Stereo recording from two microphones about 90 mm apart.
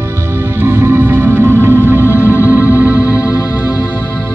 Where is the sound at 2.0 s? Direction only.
30° left (ahead or behind).